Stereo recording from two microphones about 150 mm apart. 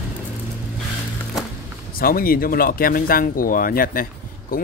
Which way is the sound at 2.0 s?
80° left.